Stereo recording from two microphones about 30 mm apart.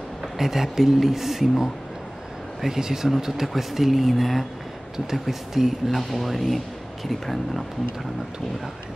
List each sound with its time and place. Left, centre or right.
0.4 s speech: centre
2.7 s speech: centre
5.9 s speech: centre